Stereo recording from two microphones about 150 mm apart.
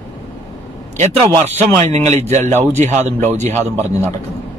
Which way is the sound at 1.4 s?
45° right (ahead or behind).